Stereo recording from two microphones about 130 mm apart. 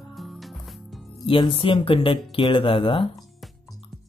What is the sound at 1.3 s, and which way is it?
Speech, 45° left (ahead or behind).